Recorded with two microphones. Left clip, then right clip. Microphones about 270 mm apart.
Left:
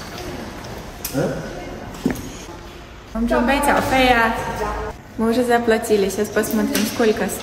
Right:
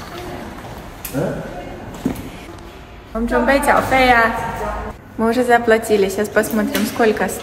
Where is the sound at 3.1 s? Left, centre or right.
Centre.